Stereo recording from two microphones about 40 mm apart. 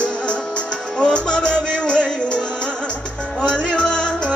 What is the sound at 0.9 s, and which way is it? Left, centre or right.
Music, left.